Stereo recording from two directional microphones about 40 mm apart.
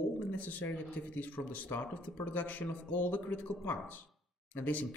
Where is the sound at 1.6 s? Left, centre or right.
Left.